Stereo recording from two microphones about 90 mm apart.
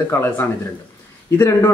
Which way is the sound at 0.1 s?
30° left (ahead or behind).